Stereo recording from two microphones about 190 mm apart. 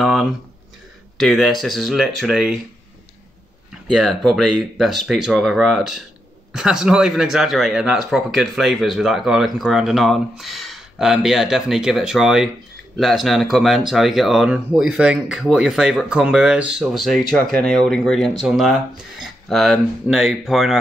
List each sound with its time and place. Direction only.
0.0 s a sound: centre (ahead or behind)
1.1 s speech: centre (ahead or behind)
3.9 s speech: centre (ahead or behind)